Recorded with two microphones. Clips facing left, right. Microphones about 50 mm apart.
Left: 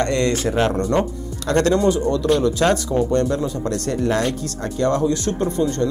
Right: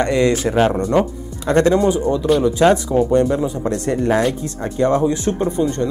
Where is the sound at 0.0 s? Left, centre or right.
Centre.